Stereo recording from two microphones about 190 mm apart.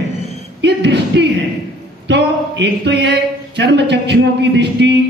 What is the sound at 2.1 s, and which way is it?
A man's voice, 65° right (ahead or behind).